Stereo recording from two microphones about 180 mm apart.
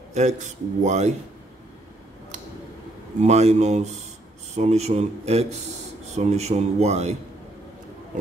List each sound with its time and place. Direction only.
0.1 s speech: 40° right (ahead or behind)
3.2 s speech: 35° right (ahead or behind)